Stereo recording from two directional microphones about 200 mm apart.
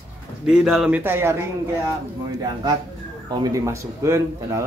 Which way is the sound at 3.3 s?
15° right (ahead or behind).